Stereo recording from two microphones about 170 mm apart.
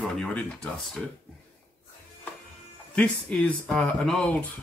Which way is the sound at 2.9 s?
5° left (ahead or behind).